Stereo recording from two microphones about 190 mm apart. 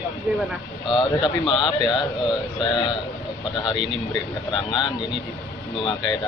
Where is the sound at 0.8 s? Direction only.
25° left (ahead or behind).